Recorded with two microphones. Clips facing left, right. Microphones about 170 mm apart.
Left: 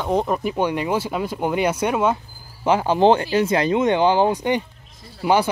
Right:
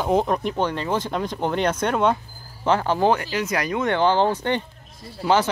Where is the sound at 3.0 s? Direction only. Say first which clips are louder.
Left 5 dB; 30° left (ahead or behind).